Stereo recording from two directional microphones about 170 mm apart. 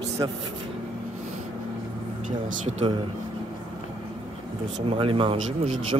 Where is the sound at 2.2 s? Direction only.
45° right (ahead or behind).